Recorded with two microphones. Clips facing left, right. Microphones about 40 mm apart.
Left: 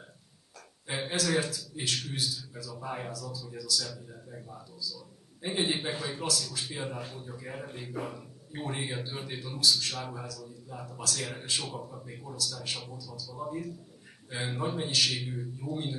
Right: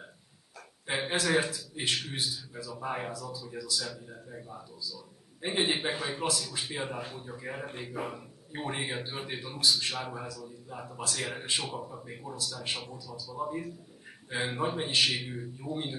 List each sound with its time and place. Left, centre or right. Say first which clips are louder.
0.8 s a man's voice: right 2 dB; right